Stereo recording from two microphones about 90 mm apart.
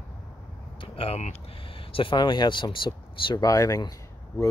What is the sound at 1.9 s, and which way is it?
Speech, 65° left (ahead or behind).